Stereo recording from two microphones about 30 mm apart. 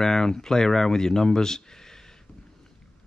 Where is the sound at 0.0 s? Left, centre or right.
Centre.